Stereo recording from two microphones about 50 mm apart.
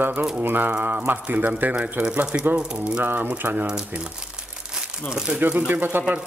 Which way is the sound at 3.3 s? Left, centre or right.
Right.